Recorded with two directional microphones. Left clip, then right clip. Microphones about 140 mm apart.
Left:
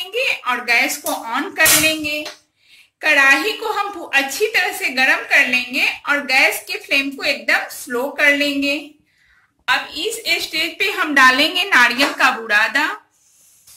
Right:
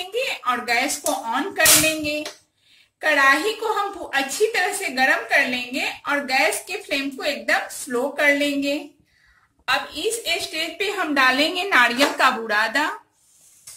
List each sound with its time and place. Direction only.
0.1 s a woman's voice: 25° right (ahead or behind)
9.7 s a woman's voice: 45° right (ahead or behind)
11.0 s a woman's voice: 10° right (ahead or behind)
12.2 s a woman's voice: 35° right (ahead or behind)